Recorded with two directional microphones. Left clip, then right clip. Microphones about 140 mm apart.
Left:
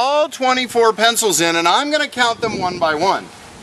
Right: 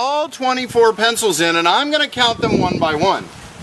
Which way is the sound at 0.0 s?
20° left (ahead or behind).